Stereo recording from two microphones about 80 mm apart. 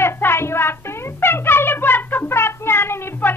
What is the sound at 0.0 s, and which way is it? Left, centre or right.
Music, left.